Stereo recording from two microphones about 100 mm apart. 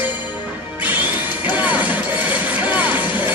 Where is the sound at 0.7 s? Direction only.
15° right (ahead or behind).